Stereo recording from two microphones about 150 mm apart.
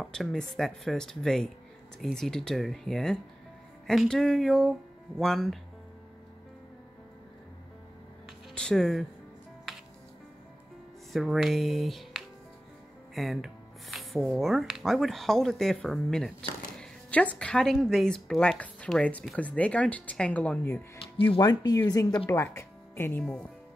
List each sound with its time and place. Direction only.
0.0 s speech: centre (ahead or behind)
8.5 s speech: 5° left (ahead or behind)
11.1 s speech: centre (ahead or behind)
21.2 s speech: 30° left (ahead or behind)